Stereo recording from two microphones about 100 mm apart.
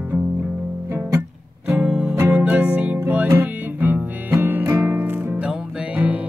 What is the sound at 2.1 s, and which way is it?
Music, 25° right (ahead or behind).